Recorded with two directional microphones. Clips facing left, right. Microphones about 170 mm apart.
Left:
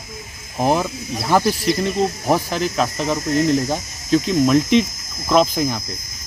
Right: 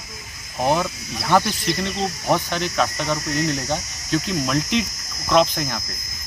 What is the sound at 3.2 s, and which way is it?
Speech, 50° left (ahead or behind).